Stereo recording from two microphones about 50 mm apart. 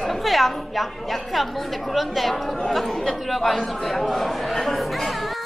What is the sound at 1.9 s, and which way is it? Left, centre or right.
Chatter, centre.